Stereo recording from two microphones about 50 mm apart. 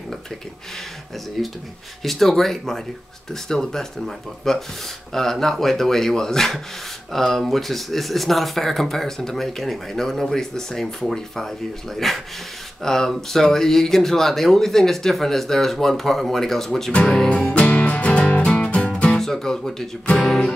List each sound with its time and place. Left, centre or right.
1.4 s speech: centre
16.9 s music: centre
19.1 s speech: centre